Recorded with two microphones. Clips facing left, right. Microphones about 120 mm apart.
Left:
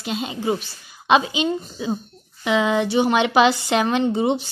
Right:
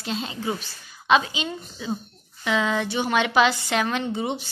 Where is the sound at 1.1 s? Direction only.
20° left (ahead or behind).